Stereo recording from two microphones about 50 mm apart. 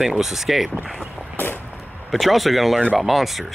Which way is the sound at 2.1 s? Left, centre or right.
Centre.